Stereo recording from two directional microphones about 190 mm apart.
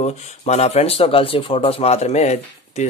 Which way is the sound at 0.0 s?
35° left (ahead or behind).